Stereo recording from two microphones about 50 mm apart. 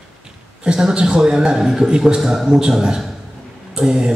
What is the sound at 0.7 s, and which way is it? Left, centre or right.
A man's voice, centre.